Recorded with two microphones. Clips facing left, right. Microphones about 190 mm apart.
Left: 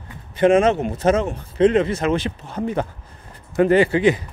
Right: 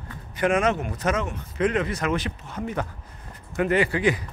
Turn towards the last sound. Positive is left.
turn(degrees=25)  # may be behind; listen again after turning